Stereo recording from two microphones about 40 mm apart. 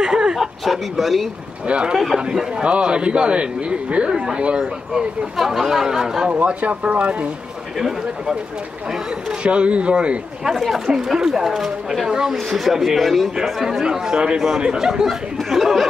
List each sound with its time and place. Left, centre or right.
0.0 s a sound: centre
0.4 s speech: centre
1.7 s a man's voice: right
5.4 s speech: centre
6.4 s a man's voice: right
9.4 s a man's voice: right
10.5 s speech: centre
10.9 s speech: centre
12.1 s speech: centre
12.4 s speech: centre
13.4 s speech: centre